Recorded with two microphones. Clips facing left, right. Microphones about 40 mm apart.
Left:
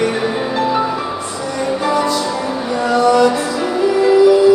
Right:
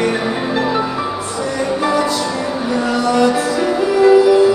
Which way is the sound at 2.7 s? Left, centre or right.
Centre.